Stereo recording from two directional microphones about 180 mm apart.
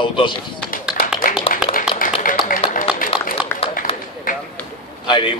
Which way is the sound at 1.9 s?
5° right (ahead or behind).